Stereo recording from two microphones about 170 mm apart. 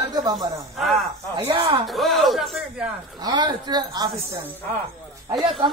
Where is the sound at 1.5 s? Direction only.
30° right (ahead or behind).